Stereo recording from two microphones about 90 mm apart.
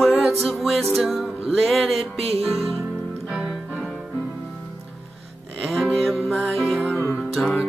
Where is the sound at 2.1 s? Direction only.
90° right.